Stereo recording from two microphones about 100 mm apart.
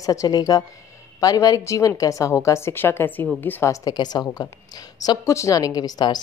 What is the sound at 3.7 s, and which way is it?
A woman's voice, 45° left (ahead or behind).